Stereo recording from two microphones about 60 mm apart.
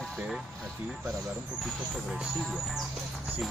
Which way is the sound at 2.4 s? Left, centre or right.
Centre.